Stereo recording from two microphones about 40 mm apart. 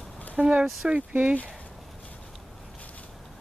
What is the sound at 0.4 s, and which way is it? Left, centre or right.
Speech, right.